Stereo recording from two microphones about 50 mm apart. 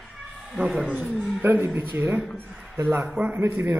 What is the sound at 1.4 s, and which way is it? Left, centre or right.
A man's voice, right.